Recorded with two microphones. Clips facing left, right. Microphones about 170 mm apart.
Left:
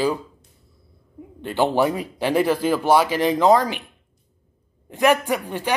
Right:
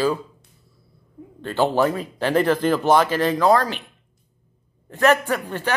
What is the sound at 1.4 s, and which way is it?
Speech, 15° left (ahead or behind).